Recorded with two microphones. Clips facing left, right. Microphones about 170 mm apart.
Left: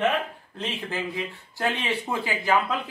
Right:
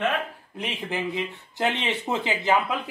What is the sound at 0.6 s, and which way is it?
Speech, 15° right (ahead or behind).